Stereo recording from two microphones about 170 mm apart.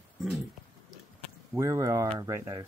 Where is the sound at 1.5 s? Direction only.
20° right (ahead or behind).